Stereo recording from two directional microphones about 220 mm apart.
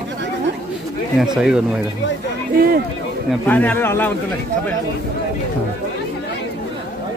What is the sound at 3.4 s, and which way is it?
Speech, 10° left (ahead or behind).